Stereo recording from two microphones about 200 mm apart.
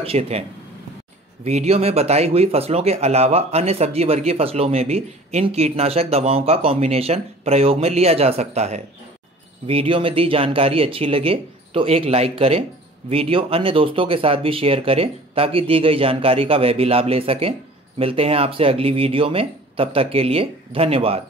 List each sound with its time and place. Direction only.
0.0 s speech: 30° right (ahead or behind)